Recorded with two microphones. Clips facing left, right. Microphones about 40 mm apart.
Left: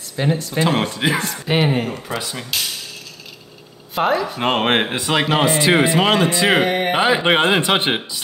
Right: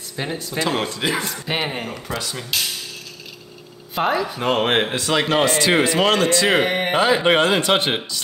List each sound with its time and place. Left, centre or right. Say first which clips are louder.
0.1 s speech: left 6 dB; centre
0.6 s speech: left 1 dB; centre
1.1 s speech: left 4 dB; centre
2.0 s speech: left 1 dB; centre
3.9 s speech: left 2 dB; centre
4.4 s speech: even; left
4.7 s speech: left 1 dB; centre
6.6 s speech: left 2 dB; centre
7.0 s speech: right 1 dB; centre